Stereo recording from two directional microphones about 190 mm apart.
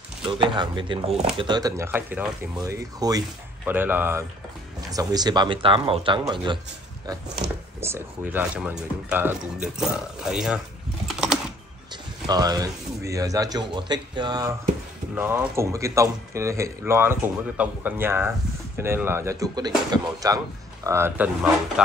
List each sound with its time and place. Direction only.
0.2 s speech: 25° right (ahead or behind)
7.4 s speech: 65° right (ahead or behind)
7.8 s speech: 10° right (ahead or behind)
11.1 s typing: 5° right (ahead or behind)
11.9 s speech: 20° right (ahead or behind)